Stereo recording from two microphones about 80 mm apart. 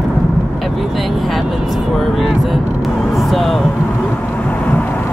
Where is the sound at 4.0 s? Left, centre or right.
Centre.